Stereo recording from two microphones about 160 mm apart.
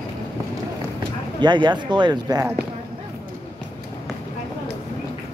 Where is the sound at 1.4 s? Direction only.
30° right (ahead or behind).